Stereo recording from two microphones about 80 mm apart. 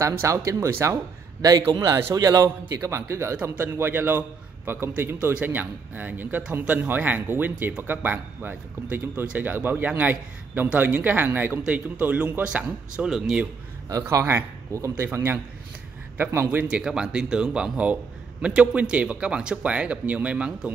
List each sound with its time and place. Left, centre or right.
0.0 s speech: right
2.1 s a man's voice: right
2.7 s a man's voice: right; by 13.4 s centre
14.2 s a man's voice: right
16.6 s speech: centre